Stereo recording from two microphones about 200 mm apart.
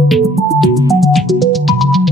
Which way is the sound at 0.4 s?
Centre (ahead or behind).